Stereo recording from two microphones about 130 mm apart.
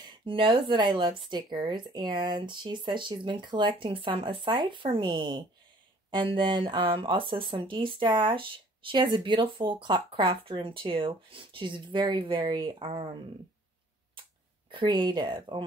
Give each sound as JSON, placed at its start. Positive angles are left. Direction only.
{"t": 0.0, "sound": "speech", "side_deg": -40}
{"t": 14.7, "sound": "speech", "side_deg": -35}